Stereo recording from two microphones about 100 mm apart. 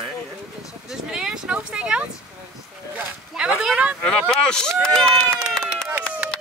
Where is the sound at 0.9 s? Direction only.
5° right (ahead or behind).